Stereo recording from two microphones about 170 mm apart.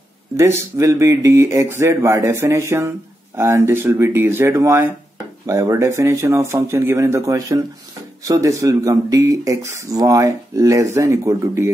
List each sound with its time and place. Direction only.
0.4 s speech: 15° right (ahead or behind)